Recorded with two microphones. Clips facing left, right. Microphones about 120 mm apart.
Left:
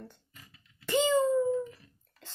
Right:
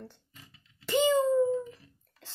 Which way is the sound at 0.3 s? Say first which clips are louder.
Right 1 dB; 20° right (ahead or behind).